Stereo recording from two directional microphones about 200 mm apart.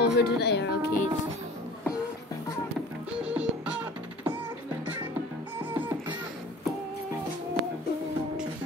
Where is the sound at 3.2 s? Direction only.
5° right (ahead or behind).